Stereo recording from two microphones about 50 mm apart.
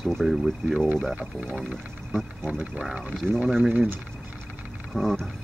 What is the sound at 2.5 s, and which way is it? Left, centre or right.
Speech, centre.